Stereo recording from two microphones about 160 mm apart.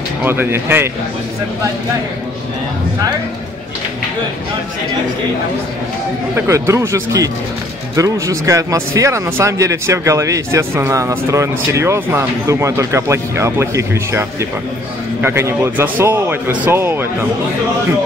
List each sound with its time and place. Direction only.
0.2 s speech: 15° right (ahead or behind)
6.3 s speech: 15° right (ahead or behind)